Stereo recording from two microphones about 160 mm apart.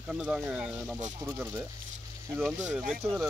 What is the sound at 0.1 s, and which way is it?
Speech, 5° right (ahead or behind).